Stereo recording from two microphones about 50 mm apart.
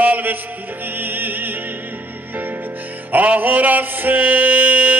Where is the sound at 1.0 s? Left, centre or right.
Right.